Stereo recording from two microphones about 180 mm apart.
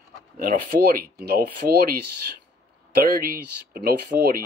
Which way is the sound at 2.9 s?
55° right (ahead or behind).